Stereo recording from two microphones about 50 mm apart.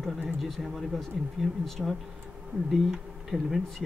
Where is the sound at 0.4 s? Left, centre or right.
Centre.